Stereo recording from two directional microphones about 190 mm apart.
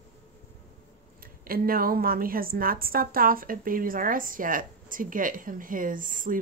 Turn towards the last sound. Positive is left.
turn(degrees=-45)  # may be behind; listen again after turning